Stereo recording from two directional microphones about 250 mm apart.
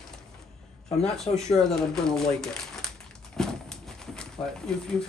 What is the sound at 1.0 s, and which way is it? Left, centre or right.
Speech, centre.